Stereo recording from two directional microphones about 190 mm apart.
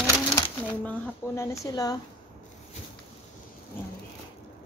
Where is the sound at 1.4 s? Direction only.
20° left (ahead or behind).